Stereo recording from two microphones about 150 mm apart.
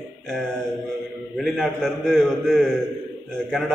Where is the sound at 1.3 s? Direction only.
5° left (ahead or behind).